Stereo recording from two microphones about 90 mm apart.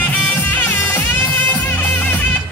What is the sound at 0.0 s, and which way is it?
Music, 20° left (ahead or behind).